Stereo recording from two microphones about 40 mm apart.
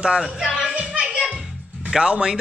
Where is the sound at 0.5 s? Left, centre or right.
Centre.